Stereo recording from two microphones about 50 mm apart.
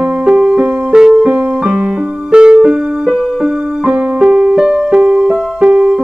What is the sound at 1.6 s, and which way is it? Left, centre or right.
Music, centre.